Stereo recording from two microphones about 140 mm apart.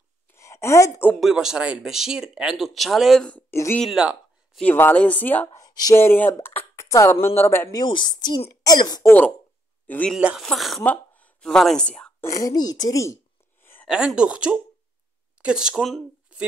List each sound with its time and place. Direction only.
0.3 s a sound: 20° left (ahead or behind)
1.2 s speech: 5° right (ahead or behind); by 3.8 s 15° left (ahead or behind)
3.8 s speech: 5° right (ahead or behind)
4.6 s speech: 15° left (ahead or behind)
5.6 s speech: 25° left (ahead or behind)
7.8 s a woman's voice: 35° left (ahead or behind)
9.8 s speech: 10° left (ahead or behind)
10.1 s speech: 5° right (ahead or behind)
12.2 s a sound: 25° left (ahead or behind)
13.8 s speech: 5° right (ahead or behind)